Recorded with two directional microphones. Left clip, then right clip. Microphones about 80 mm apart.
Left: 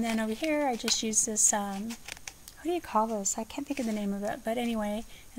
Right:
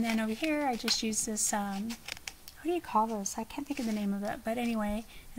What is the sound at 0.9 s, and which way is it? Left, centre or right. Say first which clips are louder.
Speech: left 4 dB; left.